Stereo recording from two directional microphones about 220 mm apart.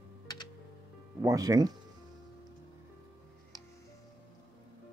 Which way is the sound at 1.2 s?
15° right (ahead or behind).